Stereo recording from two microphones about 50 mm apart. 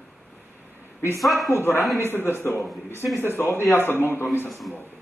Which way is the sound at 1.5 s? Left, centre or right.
Left.